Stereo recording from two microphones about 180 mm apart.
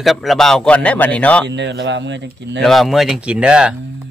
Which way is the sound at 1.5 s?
75° right (ahead or behind).